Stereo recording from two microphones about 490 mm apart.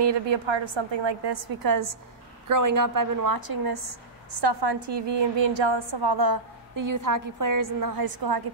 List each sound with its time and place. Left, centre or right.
0.0 s a woman's voice: right